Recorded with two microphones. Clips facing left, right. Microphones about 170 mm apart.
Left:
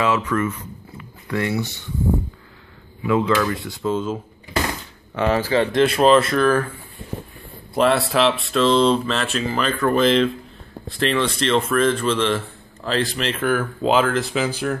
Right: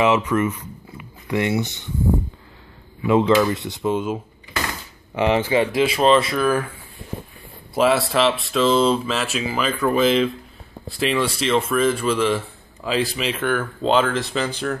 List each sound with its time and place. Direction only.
0.0 s speech: 20° right (ahead or behind)
3.1 s speech: 25° right (ahead or behind); by 6.7 s 10° right (ahead or behind)
7.7 s speech: centre (ahead or behind)